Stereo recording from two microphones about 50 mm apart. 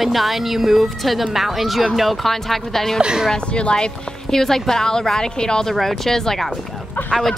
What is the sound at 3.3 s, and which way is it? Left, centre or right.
Speech, left.